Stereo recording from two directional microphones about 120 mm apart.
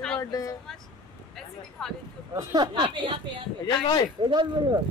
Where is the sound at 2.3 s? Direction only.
35° right (ahead or behind).